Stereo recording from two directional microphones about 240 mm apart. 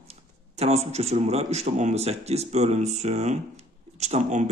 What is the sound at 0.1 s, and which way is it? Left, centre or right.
A man's voice, right.